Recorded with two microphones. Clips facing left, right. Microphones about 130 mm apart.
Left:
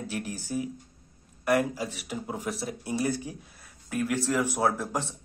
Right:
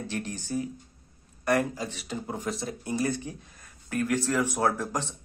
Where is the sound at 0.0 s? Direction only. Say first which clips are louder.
Even; 10° left (ahead or behind).